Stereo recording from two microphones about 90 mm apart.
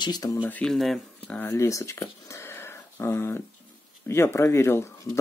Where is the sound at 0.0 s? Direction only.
50° left (ahead or behind).